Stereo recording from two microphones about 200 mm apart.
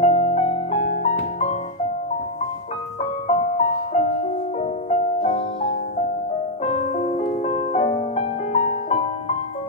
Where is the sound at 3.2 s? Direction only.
35° left (ahead or behind).